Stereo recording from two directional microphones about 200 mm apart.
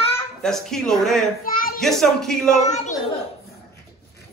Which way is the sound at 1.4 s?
45° left (ahead or behind).